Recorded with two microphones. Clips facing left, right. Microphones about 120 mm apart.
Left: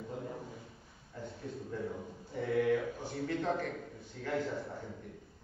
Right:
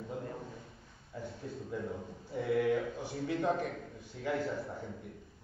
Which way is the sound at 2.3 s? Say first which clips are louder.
Even; 10° right (ahead or behind).